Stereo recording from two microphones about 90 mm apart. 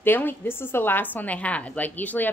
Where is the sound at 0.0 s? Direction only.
20° left (ahead or behind).